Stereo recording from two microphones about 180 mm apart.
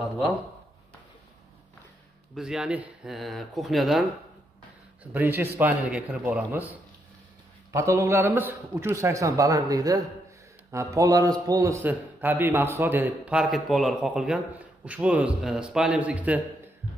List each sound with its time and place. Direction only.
2.3 s speech: 5° right (ahead or behind)
5.1 s a man's voice: 10° right (ahead or behind)